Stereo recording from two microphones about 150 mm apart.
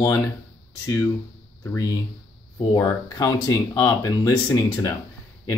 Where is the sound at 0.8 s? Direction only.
25° left (ahead or behind).